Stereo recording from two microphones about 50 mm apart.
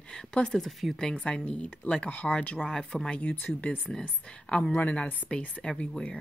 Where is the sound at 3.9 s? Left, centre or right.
Centre.